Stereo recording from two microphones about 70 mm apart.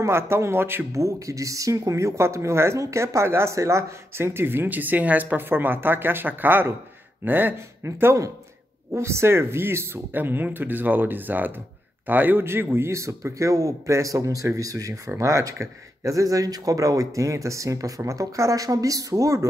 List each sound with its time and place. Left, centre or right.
0.0 s speech: right
0.9 s speech: right
7.8 s speech: right